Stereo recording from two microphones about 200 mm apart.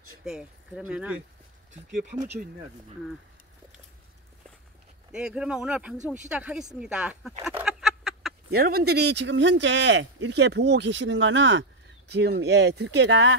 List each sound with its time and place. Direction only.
0.2 s speech: 5° right (ahead or behind)
5.1 s speech: 5° right (ahead or behind)
7.4 s chicken: centre (ahead or behind)
8.5 s speech: 50° right (ahead or behind); by 13.4 s 70° right (ahead or behind)